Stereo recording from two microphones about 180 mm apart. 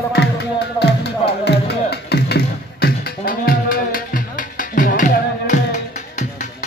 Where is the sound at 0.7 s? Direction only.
65° left (ahead or behind).